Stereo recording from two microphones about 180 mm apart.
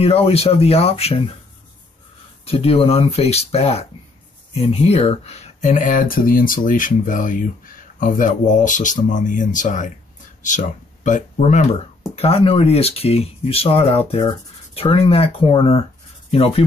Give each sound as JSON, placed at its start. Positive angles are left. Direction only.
{"t": 0.0, "sound": "speech", "side_deg": 35}
{"t": 2.4, "sound": "speech", "side_deg": 35}